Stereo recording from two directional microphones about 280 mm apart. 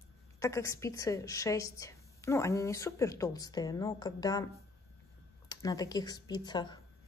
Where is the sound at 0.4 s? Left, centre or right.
Centre.